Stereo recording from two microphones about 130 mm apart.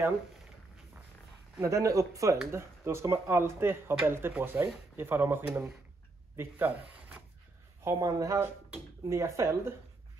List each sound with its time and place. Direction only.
1.6 s speech: 25° right (ahead or behind)
7.8 s speech: 25° right (ahead or behind)